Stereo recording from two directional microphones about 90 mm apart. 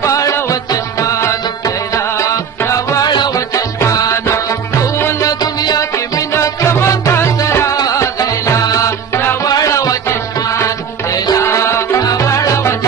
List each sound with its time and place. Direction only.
0.0 s music: 35° left (ahead or behind)
5.4 s music: 50° left (ahead or behind)
6.3 s music: 30° left (ahead or behind)
9.5 s music: 40° left (ahead or behind)
11.1 s music: 50° left (ahead or behind)
11.4 s music: 30° left (ahead or behind)